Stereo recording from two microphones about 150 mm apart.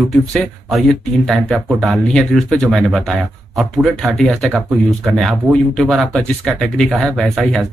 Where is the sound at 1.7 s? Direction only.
Centre (ahead or behind).